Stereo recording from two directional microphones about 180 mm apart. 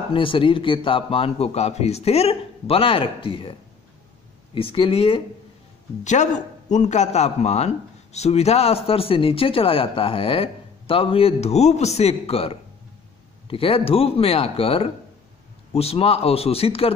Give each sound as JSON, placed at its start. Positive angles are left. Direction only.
{"t": 0.1, "sound": "a man's voice", "side_deg": 30}
{"t": 4.6, "sound": "a man's voice", "side_deg": 30}
{"t": 6.0, "sound": "a man's voice", "side_deg": 40}